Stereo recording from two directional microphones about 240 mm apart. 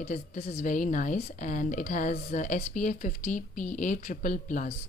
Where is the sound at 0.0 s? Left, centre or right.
Left.